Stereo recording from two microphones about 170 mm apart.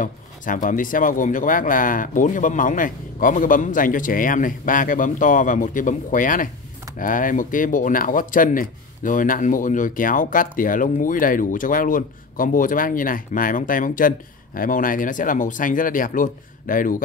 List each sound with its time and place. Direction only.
0.0 s speech: 50° left (ahead or behind)